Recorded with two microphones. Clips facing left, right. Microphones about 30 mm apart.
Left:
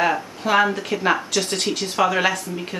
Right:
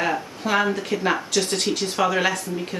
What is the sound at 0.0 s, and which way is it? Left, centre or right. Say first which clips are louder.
Speech: left 3 dB; centre.